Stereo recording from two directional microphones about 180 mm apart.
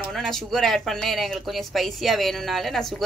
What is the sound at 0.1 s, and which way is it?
Speech, centre (ahead or behind).